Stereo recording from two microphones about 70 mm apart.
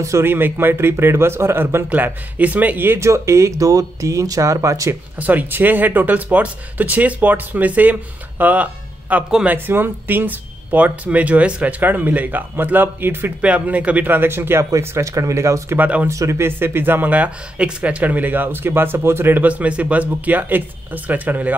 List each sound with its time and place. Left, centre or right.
0.2 s speech: right
1.9 s speech: right
3.0 s speech: right
5.2 s speech: right
13.4 s speech: centre
14.6 s speech: right
15.8 s speech: right
16.1 s speech: right
19.4 s speech: centre